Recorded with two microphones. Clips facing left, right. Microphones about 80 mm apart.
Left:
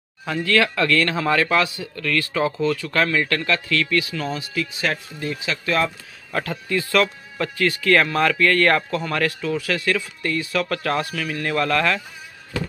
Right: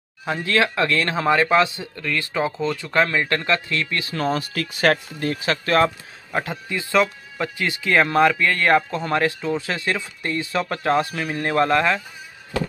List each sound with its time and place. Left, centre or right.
0.3 s speech: right
6.3 s speech: centre